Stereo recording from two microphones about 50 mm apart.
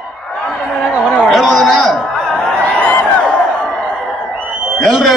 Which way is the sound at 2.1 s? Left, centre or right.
Centre.